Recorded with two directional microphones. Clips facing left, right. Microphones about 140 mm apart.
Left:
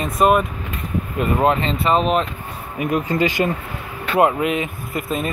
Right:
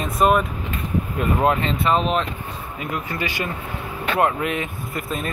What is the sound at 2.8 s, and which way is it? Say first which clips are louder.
Speech: left 9 dB; 20° left (ahead or behind).